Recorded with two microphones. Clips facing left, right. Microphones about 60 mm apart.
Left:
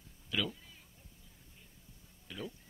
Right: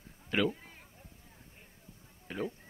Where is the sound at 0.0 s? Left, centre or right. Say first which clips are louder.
Right 6 dB; right.